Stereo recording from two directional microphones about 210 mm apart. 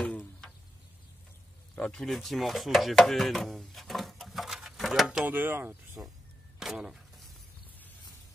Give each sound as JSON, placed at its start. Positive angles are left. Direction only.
{"t": 0.0, "sound": "a sound", "side_deg": 5}
{"t": 1.8, "sound": "speech", "side_deg": 5}
{"t": 6.6, "sound": "vehicle", "side_deg": 0}